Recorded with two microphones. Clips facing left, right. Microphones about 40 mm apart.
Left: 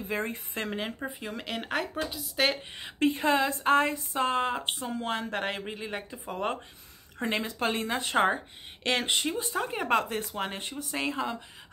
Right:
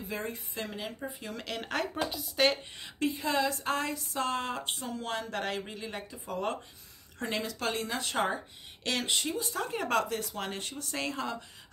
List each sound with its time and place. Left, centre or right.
0.1 s a woman's voice: left
1.0 s speech: centre
3.1 s a woman's voice: left
3.3 s speech: left